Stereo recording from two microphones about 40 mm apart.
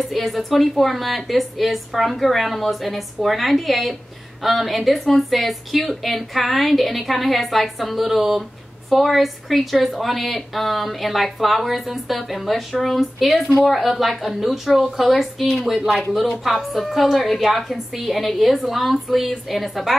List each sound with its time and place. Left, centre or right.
0.0 s a woman's voice: centre
15.9 s a woman's voice: centre